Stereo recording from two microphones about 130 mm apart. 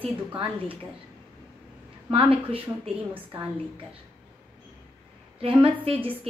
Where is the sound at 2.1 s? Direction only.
45° right (ahead or behind).